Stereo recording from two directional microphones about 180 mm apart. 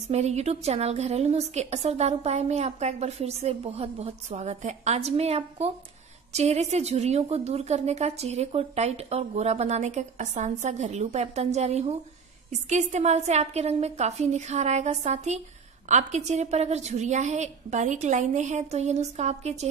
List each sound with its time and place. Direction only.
0.1 s a woman's voice: 35° right (ahead or behind)